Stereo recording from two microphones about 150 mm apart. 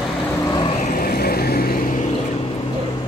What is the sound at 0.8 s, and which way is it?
Vehicle, 75° left (ahead or behind).